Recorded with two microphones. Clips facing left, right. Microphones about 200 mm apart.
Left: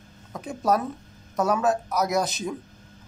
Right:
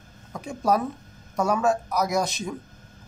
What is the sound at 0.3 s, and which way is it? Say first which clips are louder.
Speech: even; centre (ahead or behind).